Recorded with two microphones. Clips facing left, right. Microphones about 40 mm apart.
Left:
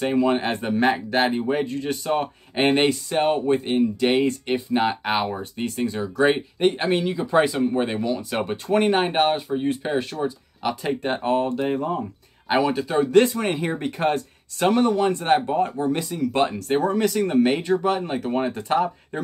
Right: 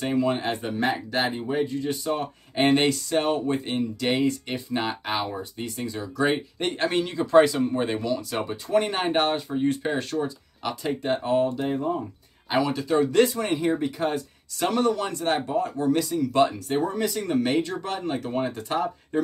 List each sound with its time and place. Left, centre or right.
0.0 s speech: left
2.5 s speech: left
4.7 s speech: left
5.1 s speech: left
6.6 s speech: centre
8.5 s speech: left
9.1 s speech: centre
10.8 s speech: left
12.4 s speech: left
14.6 s speech: left
16.5 s speech: left
17.3 s speech: left